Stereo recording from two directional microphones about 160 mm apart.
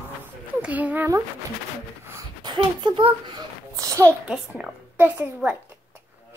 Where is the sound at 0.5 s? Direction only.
10° right (ahead or behind).